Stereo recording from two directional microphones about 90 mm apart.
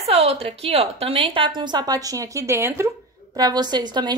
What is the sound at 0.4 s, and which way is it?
Speech, 90° right.